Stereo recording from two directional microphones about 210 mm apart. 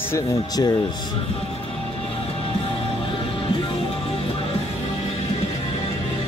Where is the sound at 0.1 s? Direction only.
15° left (ahead or behind).